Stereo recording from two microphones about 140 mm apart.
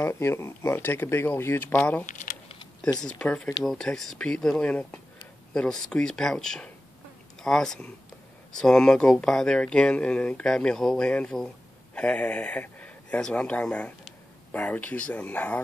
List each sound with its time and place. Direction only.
0.0 s speech: 20° left (ahead or behind)
2.0 s typing: 60° left (ahead or behind)
3.0 s speech: 5° left (ahead or behind)